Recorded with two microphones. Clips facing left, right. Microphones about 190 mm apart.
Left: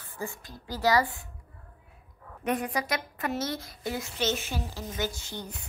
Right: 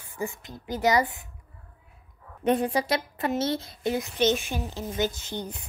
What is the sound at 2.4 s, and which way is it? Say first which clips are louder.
A woman's voice: right 6 dB; 30° right (ahead or behind).